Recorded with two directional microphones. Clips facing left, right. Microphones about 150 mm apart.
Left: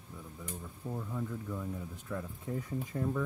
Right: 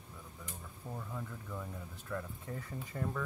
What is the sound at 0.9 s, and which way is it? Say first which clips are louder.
Speech: left 6 dB; 10° left (ahead or behind).